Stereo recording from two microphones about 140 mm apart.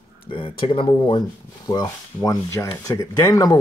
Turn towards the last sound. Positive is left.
turn(degrees=25)  # may be behind; listen again after turning